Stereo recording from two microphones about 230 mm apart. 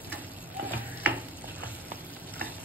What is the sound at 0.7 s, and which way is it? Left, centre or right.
Tick-tock, centre.